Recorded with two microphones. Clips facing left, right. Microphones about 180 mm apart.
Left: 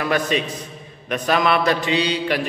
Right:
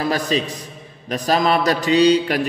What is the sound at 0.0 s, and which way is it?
A man's voice, 35° right (ahead or behind).